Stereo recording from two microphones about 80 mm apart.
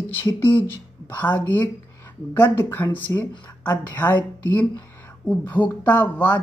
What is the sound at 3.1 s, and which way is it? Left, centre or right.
Speech, left.